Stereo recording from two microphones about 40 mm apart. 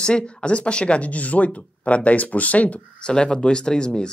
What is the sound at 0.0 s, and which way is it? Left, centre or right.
Speech, left.